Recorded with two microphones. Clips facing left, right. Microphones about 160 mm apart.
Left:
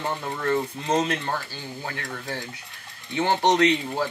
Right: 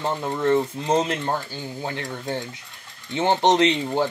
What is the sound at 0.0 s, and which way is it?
Speech, 20° right (ahead or behind).